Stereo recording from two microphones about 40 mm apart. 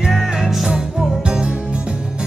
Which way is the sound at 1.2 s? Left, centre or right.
Right.